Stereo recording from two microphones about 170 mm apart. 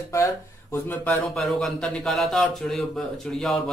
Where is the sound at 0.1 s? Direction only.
15° left (ahead or behind).